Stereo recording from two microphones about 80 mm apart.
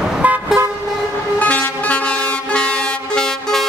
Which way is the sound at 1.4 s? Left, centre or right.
Centre.